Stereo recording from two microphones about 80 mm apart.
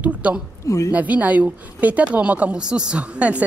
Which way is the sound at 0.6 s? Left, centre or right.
Left.